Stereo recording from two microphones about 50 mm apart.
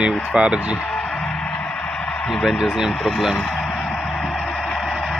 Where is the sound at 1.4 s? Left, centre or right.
Left.